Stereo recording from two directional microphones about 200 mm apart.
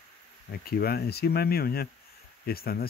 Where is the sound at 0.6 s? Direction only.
50° left (ahead or behind).